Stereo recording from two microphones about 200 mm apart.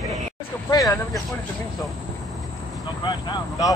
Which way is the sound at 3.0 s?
20° left (ahead or behind).